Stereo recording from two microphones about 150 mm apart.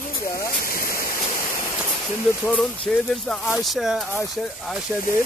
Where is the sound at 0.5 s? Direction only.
75° left (ahead or behind).